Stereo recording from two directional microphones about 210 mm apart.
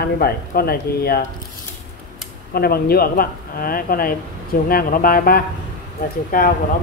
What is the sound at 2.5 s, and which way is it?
Speech, 45° left (ahead or behind).